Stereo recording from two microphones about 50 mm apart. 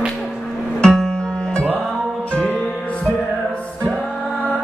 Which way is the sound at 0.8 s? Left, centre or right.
Centre.